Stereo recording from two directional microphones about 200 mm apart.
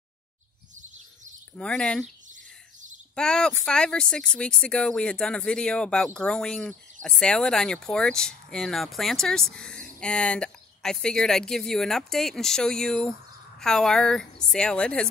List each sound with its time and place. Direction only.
0.7 s chirp: 40° right (ahead or behind)
1.5 s speech: 5° left (ahead or behind)
3.2 s speech: 5° left (ahead or behind)